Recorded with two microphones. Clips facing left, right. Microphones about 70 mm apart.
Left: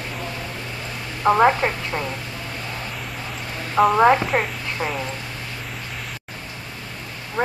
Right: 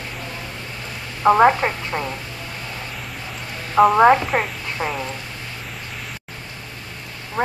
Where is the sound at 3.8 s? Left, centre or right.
Centre.